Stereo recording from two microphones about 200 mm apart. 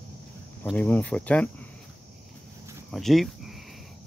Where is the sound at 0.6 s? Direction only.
5° left (ahead or behind).